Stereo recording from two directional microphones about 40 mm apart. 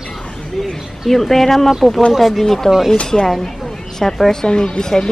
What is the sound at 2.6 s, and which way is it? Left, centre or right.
Speech, centre.